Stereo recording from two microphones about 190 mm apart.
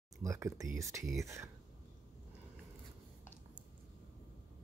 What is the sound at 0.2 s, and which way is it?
Speech, 15° right (ahead or behind).